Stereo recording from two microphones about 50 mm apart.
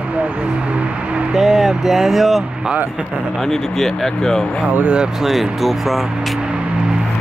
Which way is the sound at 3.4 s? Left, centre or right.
Centre.